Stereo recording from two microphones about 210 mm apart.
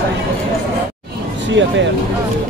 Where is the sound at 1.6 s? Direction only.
60° right (ahead or behind).